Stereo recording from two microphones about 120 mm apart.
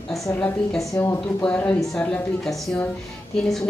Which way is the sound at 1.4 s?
10° left (ahead or behind).